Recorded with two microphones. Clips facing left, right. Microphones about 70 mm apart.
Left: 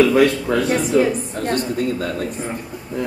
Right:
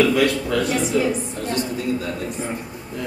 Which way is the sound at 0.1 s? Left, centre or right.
Left.